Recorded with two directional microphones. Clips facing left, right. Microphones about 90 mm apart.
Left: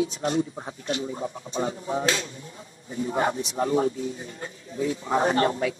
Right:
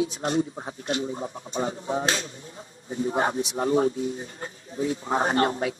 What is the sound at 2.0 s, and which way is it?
Speech, 35° right (ahead or behind).